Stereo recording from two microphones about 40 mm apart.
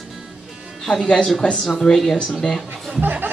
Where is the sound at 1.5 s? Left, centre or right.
Centre.